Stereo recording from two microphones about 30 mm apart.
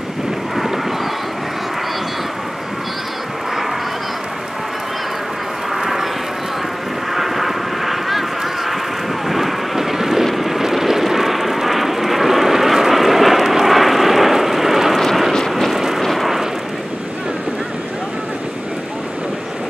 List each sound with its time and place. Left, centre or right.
5.8 s vehicle: centre
7.2 s vehicle: centre
9.3 s vehicle: centre
15.7 s a sound: centre
16.0 s vehicle: centre